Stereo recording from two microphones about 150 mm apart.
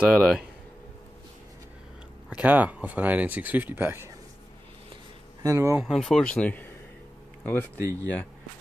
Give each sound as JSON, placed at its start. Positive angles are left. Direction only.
{"t": 0.0, "sound": "speech", "side_deg": -5}
{"t": 2.3, "sound": "speech", "side_deg": -10}
{"t": 5.4, "sound": "speech", "side_deg": -20}
{"t": 5.8, "sound": "speech", "side_deg": 0}